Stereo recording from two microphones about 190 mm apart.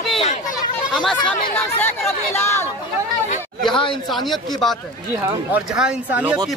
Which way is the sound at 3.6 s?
25° left (ahead or behind).